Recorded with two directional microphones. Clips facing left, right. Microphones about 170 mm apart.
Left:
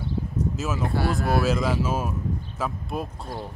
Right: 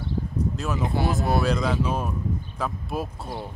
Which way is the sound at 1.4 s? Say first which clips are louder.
Even; 5° left (ahead or behind).